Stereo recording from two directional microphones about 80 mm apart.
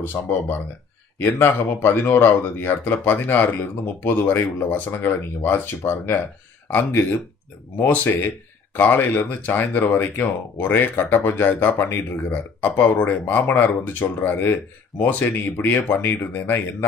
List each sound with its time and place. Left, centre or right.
0.0 s speech: left